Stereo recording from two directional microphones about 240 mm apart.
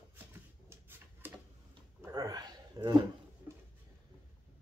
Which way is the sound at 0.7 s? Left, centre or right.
Centre.